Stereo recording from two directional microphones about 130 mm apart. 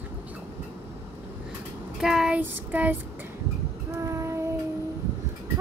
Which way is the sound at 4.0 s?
25° right (ahead or behind).